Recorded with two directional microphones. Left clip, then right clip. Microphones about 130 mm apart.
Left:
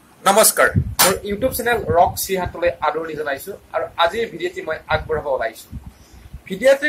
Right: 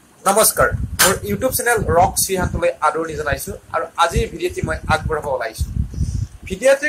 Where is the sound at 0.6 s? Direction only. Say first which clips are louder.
Left 1 dB; centre (ahead or behind).